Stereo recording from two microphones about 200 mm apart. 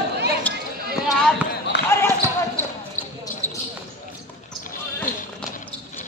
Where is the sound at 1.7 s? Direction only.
60° left (ahead or behind).